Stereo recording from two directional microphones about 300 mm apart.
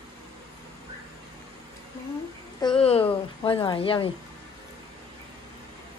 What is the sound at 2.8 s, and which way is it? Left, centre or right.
Speech, centre.